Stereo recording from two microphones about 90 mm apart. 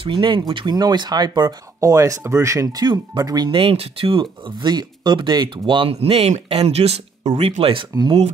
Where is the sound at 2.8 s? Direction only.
45° right (ahead or behind).